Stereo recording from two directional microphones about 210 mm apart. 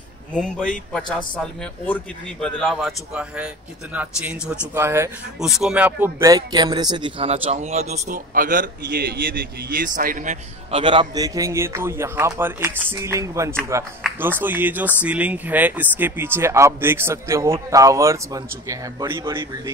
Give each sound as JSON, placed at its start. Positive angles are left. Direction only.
{"t": 0.3, "sound": "speech", "side_deg": 5}
{"t": 10.8, "sound": "speech", "side_deg": -25}